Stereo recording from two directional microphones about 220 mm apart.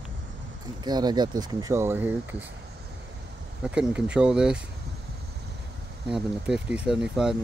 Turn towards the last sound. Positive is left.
turn(degrees=0)  # may be behind; listen again after turning